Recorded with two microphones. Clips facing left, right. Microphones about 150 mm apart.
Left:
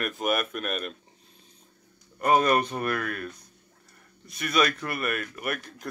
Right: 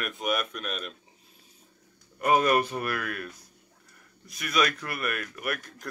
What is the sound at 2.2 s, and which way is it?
Speech, 35° left (ahead or behind).